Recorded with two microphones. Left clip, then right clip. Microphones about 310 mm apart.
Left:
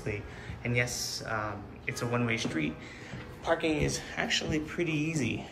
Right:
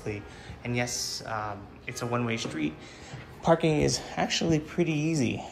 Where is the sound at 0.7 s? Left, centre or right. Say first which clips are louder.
Even; centre.